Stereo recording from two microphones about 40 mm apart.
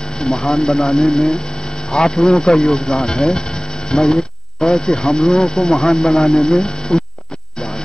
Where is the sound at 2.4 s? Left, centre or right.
Left.